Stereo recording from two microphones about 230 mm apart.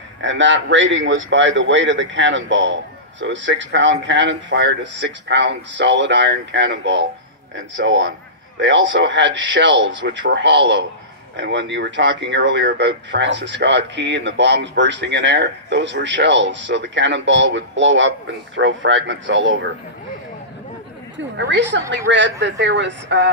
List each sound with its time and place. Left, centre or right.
0.2 s a man's voice: right
21.4 s a man's voice: right